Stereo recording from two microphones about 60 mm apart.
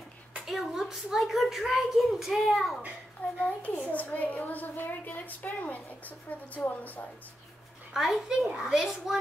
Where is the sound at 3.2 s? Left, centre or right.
Left.